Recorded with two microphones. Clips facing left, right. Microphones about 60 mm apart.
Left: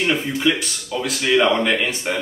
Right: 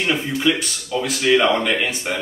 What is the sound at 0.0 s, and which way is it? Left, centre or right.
Speech, centre.